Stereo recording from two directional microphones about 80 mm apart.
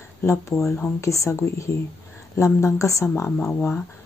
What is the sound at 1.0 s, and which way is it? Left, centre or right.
Speech, left.